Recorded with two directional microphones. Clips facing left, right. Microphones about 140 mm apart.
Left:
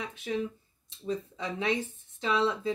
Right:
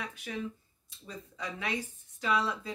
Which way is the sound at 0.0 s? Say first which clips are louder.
Left 5 dB; 25° left (ahead or behind).